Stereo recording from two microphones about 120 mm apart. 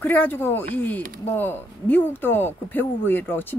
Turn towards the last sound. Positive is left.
turn(degrees=15)  # may be behind; listen again after turning